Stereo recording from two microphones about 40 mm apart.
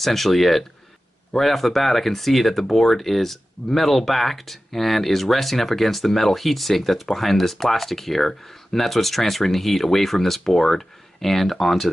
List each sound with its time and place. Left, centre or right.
0.0 s speech: centre